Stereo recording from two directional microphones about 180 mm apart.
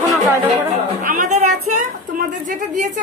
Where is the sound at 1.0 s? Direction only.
45° right (ahead or behind).